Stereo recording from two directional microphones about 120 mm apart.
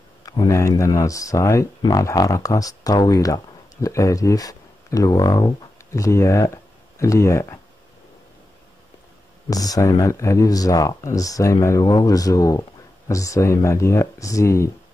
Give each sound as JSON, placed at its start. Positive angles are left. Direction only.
{"t": 0.2, "sound": "speech", "side_deg": 30}
{"t": 9.5, "sound": "speech", "side_deg": 30}